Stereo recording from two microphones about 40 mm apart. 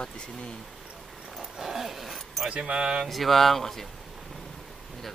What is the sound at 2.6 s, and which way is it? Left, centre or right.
Speech, right.